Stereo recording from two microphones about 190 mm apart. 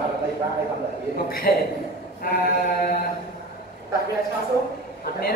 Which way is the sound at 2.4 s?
50° left (ahead or behind).